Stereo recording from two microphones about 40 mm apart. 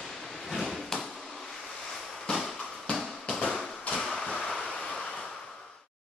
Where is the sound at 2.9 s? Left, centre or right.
Left.